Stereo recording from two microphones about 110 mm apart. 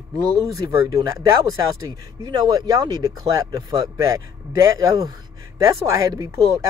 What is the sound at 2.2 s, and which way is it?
Speech, 35° right (ahead or behind).